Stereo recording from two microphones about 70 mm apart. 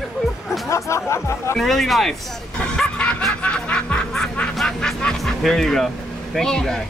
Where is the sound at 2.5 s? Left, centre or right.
Centre.